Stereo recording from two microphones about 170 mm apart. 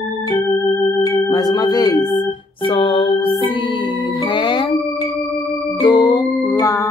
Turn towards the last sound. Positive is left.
turn(degrees=20)  # may be behind; listen again after turning